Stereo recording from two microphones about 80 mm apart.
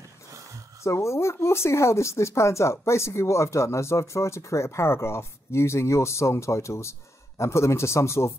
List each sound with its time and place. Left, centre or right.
0.8 s speech: left